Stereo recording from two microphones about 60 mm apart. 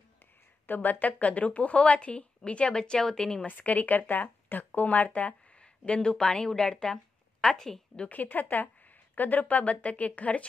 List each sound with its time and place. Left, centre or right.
0.7 s speech: left; by 3.4 s centre
3.4 s a woman's voice: left; by 8.1 s centre
8.1 s speech: left